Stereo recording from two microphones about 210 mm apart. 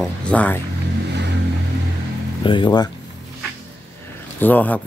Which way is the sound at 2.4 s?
20° left (ahead or behind).